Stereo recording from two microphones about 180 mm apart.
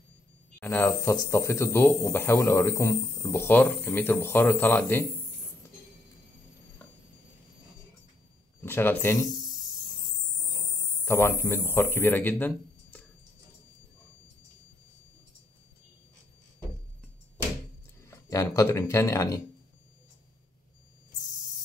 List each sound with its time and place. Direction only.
0.6 s speech: 10° left (ahead or behind)
8.6 s speech: 10° left (ahead or behind)
9.3 s snake: 25° right (ahead or behind)
11.1 s a man's voice: 15° left (ahead or behind)
18.0 s speech: 15° left (ahead or behind)